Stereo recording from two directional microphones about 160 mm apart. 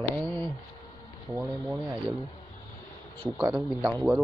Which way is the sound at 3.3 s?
10° right (ahead or behind).